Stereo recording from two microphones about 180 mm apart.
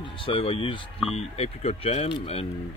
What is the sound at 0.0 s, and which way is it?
Speech, 30° left (ahead or behind).